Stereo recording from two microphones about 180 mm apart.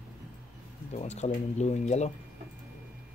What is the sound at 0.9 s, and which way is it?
Speech, 40° left (ahead or behind).